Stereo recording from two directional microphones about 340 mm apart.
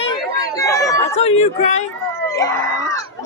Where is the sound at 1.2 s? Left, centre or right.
Centre.